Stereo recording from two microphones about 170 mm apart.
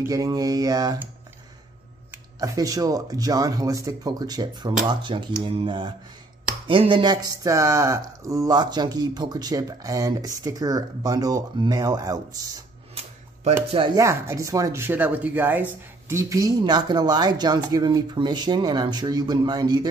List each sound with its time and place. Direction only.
0.1 s speech: 20° right (ahead or behind)
2.4 s speech: 20° right (ahead or behind)
12.9 s a sound: 40° right (ahead or behind)
13.7 s speech: 30° right (ahead or behind)
13.9 s speech: 20° right (ahead or behind)